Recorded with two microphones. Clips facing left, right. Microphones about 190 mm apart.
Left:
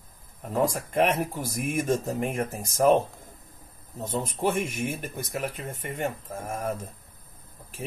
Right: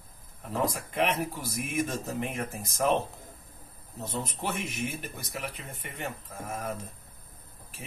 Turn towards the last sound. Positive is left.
turn(degrees=45)  # may be behind; listen again after turning